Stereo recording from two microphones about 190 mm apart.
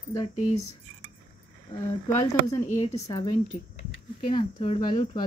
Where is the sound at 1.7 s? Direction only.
20° left (ahead or behind).